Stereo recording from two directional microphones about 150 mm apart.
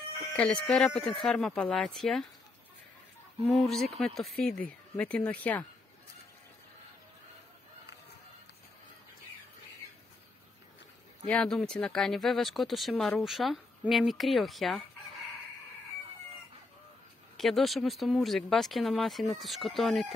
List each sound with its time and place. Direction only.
0.4 s speech: 10° left (ahead or behind)
3.4 s speech: centre (ahead or behind)
11.2 s speech: 5° left (ahead or behind)
17.4 s speech: centre (ahead or behind)